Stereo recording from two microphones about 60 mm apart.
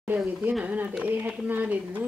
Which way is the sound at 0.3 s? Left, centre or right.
Right.